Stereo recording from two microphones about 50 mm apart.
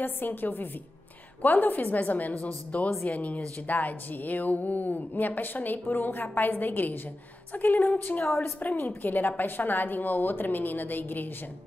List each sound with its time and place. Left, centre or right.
0.0 s speech: left